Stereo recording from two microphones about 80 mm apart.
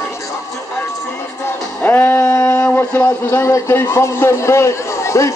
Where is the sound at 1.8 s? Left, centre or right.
Left.